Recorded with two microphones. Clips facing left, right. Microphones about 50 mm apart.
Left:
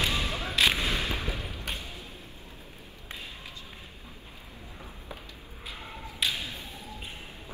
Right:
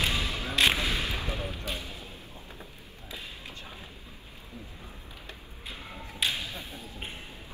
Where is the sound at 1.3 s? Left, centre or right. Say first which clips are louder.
Right 3 dB; right.